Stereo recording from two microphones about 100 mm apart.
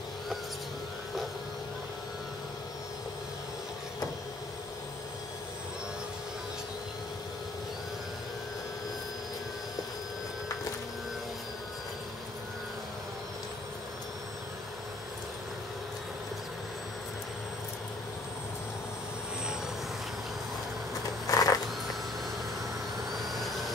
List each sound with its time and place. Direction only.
21.3 s vehicle: 35° left (ahead or behind)
23.2 s vehicle: centre (ahead or behind)